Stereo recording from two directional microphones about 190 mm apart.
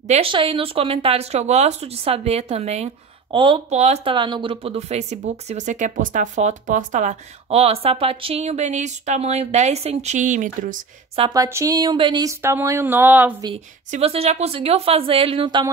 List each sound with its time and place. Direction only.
0.1 s speech: 25° right (ahead or behind)
11.1 s speech: 20° right (ahead or behind)
13.9 s speech: 30° right (ahead or behind)